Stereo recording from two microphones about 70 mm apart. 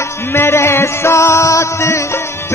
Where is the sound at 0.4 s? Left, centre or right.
Left.